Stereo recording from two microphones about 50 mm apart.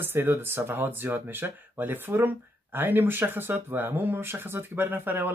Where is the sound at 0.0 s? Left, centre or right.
Right.